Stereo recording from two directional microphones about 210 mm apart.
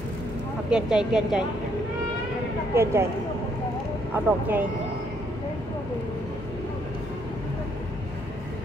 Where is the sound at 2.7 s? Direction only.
10° right (ahead or behind).